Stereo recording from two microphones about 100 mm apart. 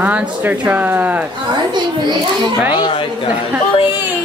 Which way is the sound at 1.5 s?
45° right (ahead or behind).